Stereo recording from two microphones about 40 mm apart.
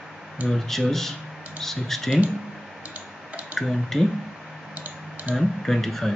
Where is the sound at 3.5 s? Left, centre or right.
Centre.